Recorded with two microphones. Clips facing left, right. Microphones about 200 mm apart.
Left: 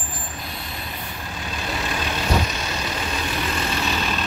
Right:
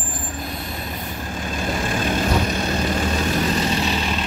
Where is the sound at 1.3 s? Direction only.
45° right (ahead or behind).